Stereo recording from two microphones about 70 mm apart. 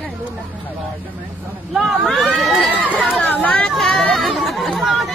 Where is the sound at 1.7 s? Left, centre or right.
Centre.